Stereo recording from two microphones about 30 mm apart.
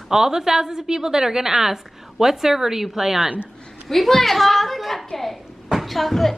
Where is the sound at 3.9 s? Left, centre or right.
Centre.